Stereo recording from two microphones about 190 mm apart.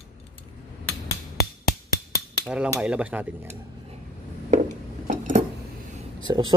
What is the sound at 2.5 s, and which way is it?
Speech, 5° right (ahead or behind).